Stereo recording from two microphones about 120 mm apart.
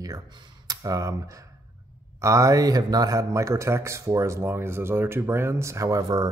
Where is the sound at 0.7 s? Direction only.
30° right (ahead or behind).